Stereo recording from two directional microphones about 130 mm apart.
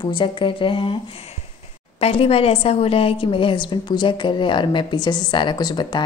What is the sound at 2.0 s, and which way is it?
A woman's voice, 50° left (ahead or behind).